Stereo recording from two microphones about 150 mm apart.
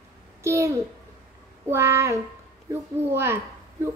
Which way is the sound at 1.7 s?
15° right (ahead or behind).